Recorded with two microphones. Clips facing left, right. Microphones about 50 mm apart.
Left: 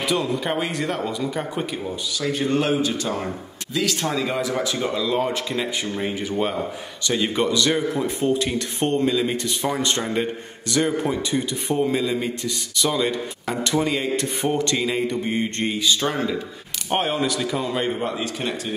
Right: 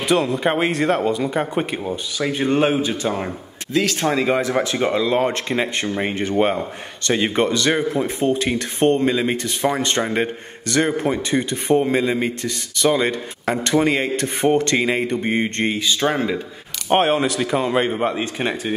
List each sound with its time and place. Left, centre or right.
0.1 s speech: right
0.9 s a man's voice: right
2.1 s speech: right
4.4 s a man's voice: right
6.1 s speech: right
7.2 s a man's voice: right
16.9 s a man's voice: right
18.0 s speech: right